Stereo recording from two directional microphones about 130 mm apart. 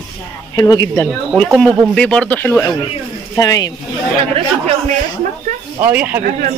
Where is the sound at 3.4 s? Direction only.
25° left (ahead or behind).